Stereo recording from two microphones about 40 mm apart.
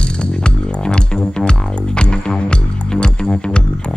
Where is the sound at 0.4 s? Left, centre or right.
Left.